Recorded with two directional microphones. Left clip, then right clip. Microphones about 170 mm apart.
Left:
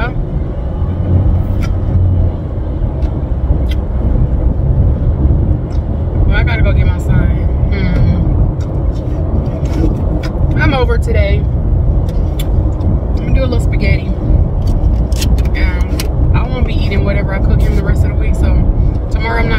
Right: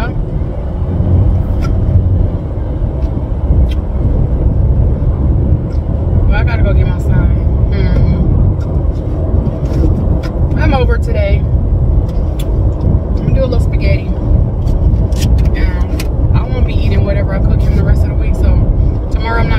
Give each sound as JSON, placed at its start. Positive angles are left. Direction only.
{"t": 10.6, "sound": "vehicle", "side_deg": 30}
{"t": 16.5, "sound": "vehicle", "side_deg": 30}